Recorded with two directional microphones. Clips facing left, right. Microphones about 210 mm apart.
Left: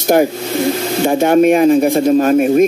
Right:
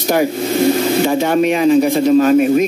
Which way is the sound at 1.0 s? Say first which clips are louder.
Left 8 dB; 50° left (ahead or behind).